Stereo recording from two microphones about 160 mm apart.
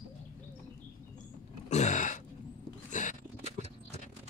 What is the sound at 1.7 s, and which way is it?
Gasp, 45° left (ahead or behind).